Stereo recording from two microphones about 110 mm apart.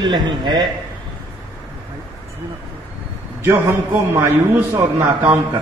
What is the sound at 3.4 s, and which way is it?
A man's voice, 20° right (ahead or behind).